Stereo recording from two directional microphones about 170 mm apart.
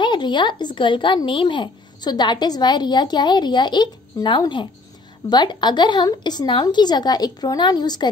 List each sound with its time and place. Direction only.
0.0 s a child's voice: 25° left (ahead or behind)